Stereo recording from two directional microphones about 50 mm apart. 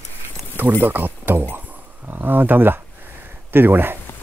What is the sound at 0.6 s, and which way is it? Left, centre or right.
Speech, right.